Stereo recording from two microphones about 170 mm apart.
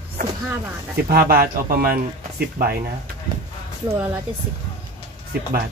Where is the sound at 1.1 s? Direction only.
60° right (ahead or behind).